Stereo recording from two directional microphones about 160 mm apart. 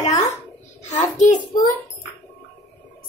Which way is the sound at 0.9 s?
50° left (ahead or behind).